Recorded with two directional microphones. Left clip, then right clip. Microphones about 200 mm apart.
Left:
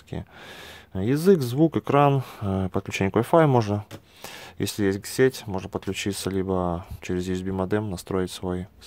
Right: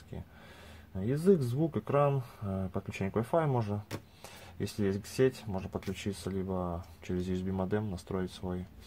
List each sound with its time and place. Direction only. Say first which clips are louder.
0.1 s speech: left 12 dB; 40° left (ahead or behind)